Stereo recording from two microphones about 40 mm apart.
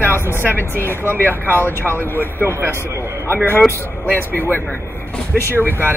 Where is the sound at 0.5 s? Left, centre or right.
Left.